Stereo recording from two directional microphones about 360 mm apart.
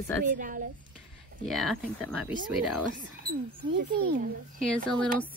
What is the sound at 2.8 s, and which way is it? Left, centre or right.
Speech, right.